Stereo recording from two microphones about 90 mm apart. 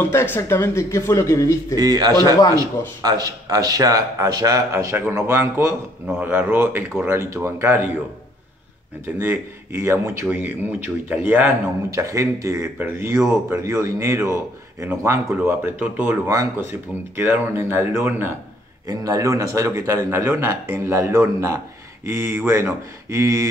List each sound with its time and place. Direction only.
0.0 s speech: 25° left (ahead or behind)
1.8 s a man's voice: 45° right (ahead or behind); by 7.9 s 25° right (ahead or behind)
9.0 s speech: 25° right (ahead or behind)
11.9 s a man's voice: 35° right (ahead or behind)
17.2 s speech: 25° right (ahead or behind)
18.9 s a man's voice: 40° right (ahead or behind)